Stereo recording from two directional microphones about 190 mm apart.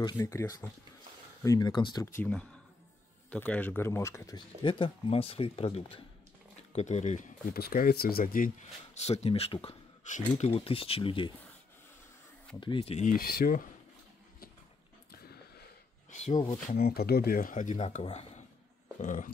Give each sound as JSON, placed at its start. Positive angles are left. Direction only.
{"t": 0.0, "sound": "speech", "side_deg": 15}
{"t": 2.1, "sound": "speech", "side_deg": 5}
{"t": 4.4, "sound": "speech", "side_deg": 25}
{"t": 8.9, "sound": "speech", "side_deg": 35}
{"t": 12.5, "sound": "speech", "side_deg": 25}
{"t": 16.1, "sound": "a sound", "side_deg": 40}
{"t": 16.4, "sound": "speech", "side_deg": 50}